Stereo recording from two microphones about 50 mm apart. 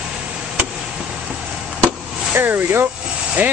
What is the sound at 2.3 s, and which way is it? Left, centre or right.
Speech, right.